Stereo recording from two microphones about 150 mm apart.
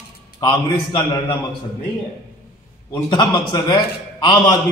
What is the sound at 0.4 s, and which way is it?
Speech, 25° left (ahead or behind).